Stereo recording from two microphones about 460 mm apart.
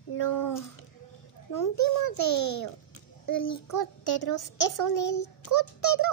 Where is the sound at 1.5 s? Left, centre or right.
Left.